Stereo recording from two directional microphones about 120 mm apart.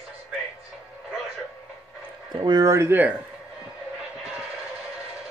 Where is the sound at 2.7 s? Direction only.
20° right (ahead or behind).